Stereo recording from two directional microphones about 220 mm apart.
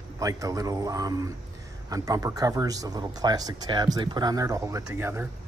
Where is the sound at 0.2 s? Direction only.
15° right (ahead or behind).